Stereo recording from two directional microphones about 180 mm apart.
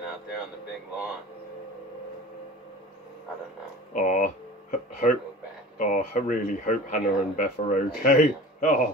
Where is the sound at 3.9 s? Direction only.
45° left (ahead or behind).